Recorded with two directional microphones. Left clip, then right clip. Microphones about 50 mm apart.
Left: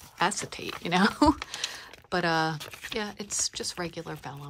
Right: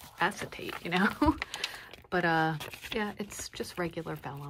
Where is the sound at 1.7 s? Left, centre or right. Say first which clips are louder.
Left 2 dB; left.